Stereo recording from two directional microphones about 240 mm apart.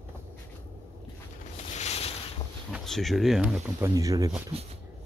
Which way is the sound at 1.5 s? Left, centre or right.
Left.